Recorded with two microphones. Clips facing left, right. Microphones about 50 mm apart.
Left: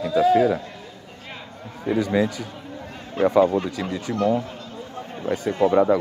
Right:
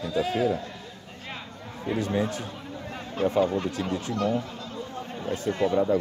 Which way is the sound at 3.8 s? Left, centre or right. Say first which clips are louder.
Left 2 dB; left.